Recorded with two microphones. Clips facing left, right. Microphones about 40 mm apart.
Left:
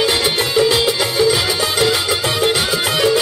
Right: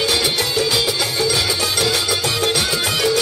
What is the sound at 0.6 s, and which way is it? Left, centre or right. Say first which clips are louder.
Music: left 7 dB; centre.